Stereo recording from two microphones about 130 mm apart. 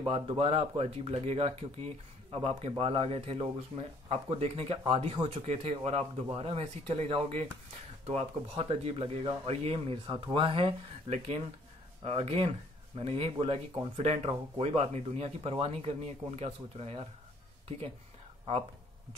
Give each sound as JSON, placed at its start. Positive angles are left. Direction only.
{"t": 0.0, "sound": "speech", "side_deg": -45}
{"t": 5.4, "sound": "speech", "side_deg": -55}
{"t": 11.1, "sound": "speech", "side_deg": -55}
{"t": 13.9, "sound": "speech", "side_deg": -60}